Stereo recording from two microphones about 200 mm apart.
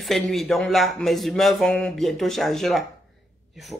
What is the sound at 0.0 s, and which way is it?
Speech, centre (ahead or behind).